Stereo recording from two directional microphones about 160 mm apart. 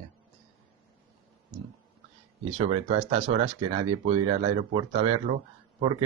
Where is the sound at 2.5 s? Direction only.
40° right (ahead or behind).